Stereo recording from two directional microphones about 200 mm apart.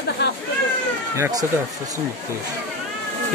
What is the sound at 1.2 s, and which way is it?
Speech, 20° right (ahead or behind).